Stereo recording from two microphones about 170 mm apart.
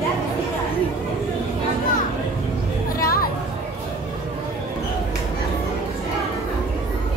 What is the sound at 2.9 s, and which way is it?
Chatter, 60° left (ahead or behind).